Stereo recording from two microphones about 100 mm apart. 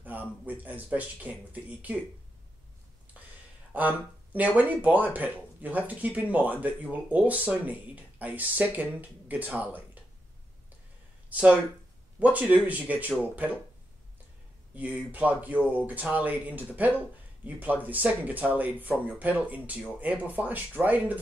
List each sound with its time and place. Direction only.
0.0 s speech: 15° right (ahead or behind)
3.7 s speech: 15° right (ahead or behind)
11.2 s speech: 15° right (ahead or behind)
14.8 s speech: 15° right (ahead or behind)